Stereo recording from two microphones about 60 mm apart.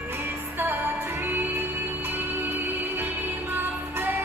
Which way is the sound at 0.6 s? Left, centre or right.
Right.